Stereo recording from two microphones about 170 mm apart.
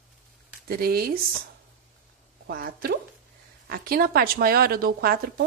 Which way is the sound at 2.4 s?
60° right (ahead or behind).